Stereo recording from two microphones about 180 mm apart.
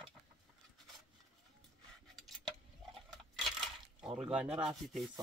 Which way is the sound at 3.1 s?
Centre (ahead or behind).